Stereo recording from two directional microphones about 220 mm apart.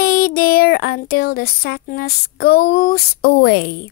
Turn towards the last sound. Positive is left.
turn(degrees=45)  # may be behind; listen again after turning